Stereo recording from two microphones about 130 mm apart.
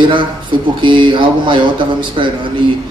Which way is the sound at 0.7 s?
40° right (ahead or behind).